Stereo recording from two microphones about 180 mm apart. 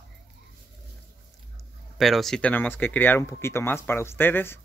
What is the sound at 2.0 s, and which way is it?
Speech, centre (ahead or behind).